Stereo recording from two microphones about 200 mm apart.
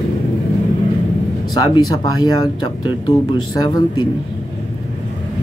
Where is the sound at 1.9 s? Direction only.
20° left (ahead or behind).